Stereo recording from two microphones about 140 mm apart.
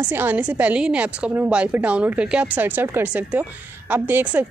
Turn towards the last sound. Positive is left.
turn(degrees=-15)  # may be behind; listen again after turning